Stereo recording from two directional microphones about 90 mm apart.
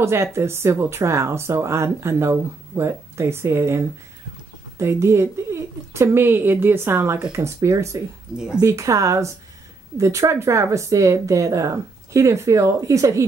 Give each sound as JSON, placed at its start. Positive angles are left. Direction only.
{"t": 0.0, "sound": "a woman's voice", "side_deg": -30}